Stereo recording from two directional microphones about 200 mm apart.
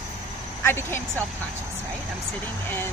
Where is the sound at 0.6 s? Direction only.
10° left (ahead or behind).